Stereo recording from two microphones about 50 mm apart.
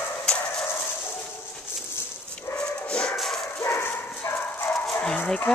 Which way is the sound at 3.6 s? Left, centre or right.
Left.